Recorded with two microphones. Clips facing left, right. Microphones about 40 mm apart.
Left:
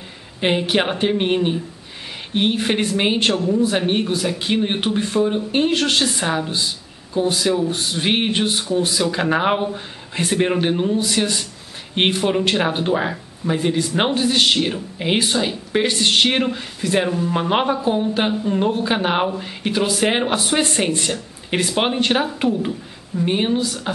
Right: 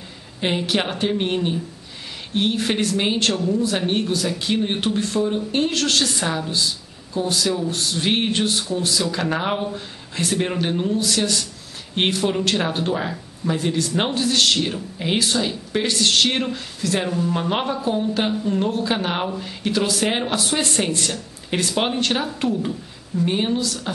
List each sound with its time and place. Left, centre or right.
0.4 s speech: centre